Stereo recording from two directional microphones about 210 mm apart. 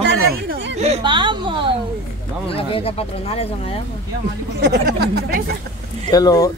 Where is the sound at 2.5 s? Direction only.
25° left (ahead or behind).